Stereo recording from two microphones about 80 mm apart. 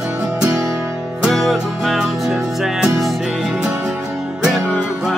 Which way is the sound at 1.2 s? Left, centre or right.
Centre.